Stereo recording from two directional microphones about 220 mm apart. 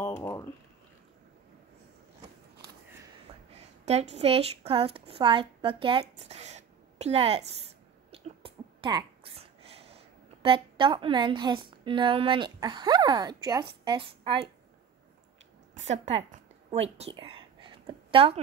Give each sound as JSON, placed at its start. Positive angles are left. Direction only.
{"t": 0.2, "sound": "speech", "side_deg": 15}
{"t": 3.5, "sound": "a woman's voice", "side_deg": -30}
{"t": 15.7, "sound": "whispering", "side_deg": -30}